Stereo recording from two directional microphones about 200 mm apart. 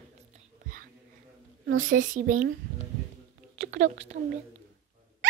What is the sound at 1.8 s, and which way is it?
Speech, 40° right (ahead or behind).